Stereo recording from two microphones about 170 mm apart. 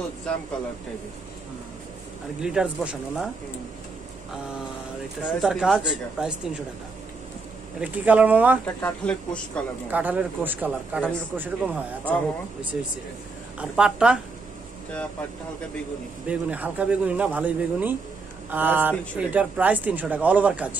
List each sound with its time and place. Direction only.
2.4 s speech: 5° right (ahead or behind)
5.2 s speech: 5° right (ahead or behind)
7.8 s speech: 10° right (ahead or behind)
8.6 s speech: 5° left (ahead or behind)
9.8 s speech: 10° right (ahead or behind)
16.3 s speech: 10° right (ahead or behind)